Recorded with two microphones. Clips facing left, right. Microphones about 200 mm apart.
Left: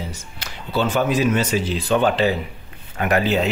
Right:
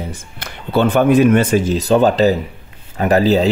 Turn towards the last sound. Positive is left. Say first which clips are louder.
# right 6 dB
turn(degrees=-35)  # may be behind; listen again after turning